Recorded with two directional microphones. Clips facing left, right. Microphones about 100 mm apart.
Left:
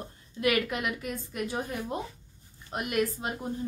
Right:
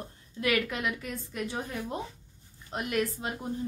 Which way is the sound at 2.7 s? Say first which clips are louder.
Left 1 dB; 15° left (ahead or behind).